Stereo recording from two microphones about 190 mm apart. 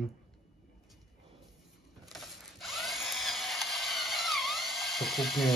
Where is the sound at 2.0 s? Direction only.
Centre (ahead or behind).